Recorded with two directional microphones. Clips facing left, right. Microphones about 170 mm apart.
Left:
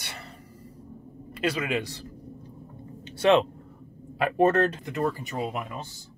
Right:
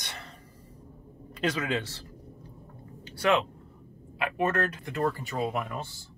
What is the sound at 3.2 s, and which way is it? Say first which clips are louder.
Speech: left 5 dB; 25° left (ahead or behind).